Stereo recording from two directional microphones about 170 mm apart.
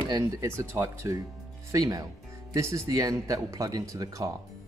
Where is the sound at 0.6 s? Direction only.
15° right (ahead or behind).